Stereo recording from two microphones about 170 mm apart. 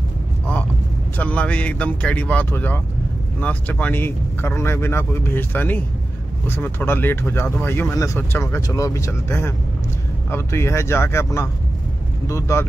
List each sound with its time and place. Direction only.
1.1 s speech: 10° left (ahead or behind)